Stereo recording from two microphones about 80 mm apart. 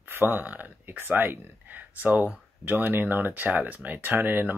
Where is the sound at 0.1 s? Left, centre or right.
Right.